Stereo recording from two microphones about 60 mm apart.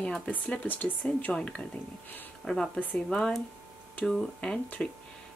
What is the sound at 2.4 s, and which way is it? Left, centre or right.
Speech, centre.